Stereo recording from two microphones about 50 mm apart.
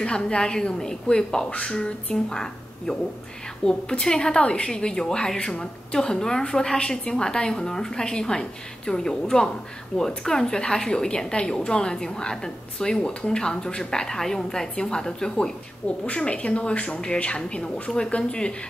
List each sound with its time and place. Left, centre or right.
0.0 s a woman's voice: centre
16.1 s speech: left